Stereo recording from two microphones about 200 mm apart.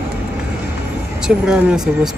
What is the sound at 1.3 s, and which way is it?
Speech, 5° right (ahead or behind).